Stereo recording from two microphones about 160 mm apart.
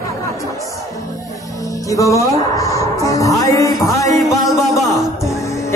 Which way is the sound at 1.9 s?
20° left (ahead or behind).